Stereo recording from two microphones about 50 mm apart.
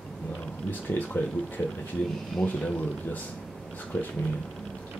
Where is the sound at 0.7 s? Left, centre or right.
Left.